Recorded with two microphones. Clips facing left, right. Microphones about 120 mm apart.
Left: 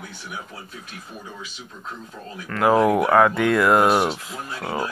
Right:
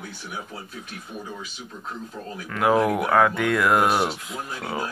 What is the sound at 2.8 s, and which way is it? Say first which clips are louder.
Speech: left 4 dB; 30° left (ahead or behind).